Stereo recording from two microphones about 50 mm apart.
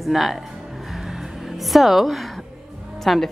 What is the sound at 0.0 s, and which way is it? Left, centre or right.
Speech, centre.